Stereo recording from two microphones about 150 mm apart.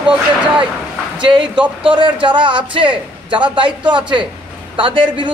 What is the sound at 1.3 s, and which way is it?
A man's voice, 35° right (ahead or behind).